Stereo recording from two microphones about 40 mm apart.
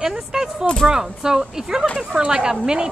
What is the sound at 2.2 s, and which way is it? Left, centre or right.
Speech, right.